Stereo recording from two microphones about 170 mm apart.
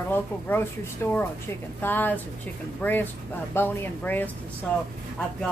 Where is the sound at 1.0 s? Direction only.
15° left (ahead or behind).